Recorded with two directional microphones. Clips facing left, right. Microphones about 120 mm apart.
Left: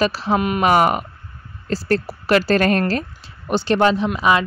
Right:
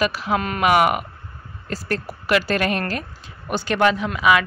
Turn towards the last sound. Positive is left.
turn(degrees=30)  # may be behind; listen again after turning